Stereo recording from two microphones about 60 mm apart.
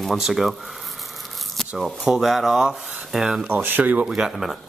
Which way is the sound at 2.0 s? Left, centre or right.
Centre.